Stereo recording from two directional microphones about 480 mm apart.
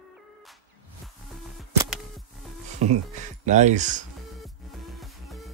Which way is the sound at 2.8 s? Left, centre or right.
Centre.